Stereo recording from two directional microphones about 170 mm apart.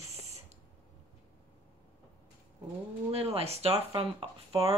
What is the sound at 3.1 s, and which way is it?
A woman's voice, 35° right (ahead or behind).